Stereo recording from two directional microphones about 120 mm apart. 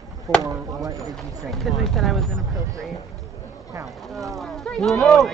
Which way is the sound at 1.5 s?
Centre (ahead or behind).